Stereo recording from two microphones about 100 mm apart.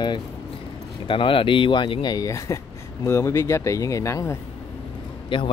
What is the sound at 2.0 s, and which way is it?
Speech, 35° left (ahead or behind).